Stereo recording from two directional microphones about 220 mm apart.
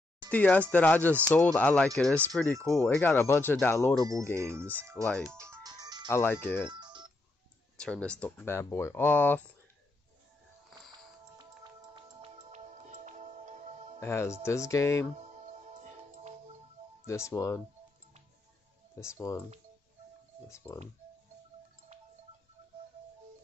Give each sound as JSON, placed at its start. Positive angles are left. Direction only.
{"t": 0.3, "sound": "speech", "side_deg": 5}
{"t": 3.9, "sound": "speech", "side_deg": -15}
{"t": 5.0, "sound": "speech", "side_deg": 5}
{"t": 5.3, "sound": "music", "side_deg": -10}
{"t": 6.0, "sound": "speech", "side_deg": 10}
{"t": 6.7, "sound": "telephone", "side_deg": -20}
{"t": 7.8, "sound": "speech", "side_deg": 5}
{"t": 10.7, "sound": "music", "side_deg": -20}
{"t": 13.9, "sound": "speech", "side_deg": 10}
{"t": 15.1, "sound": "music", "side_deg": -30}
{"t": 17.0, "sound": "speech", "side_deg": 10}
{"t": 19.1, "sound": "speech", "side_deg": 15}
{"t": 20.4, "sound": "speech", "side_deg": 15}